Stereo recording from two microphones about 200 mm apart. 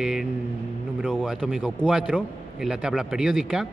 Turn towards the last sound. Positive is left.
turn(degrees=0)  # may be behind; listen again after turning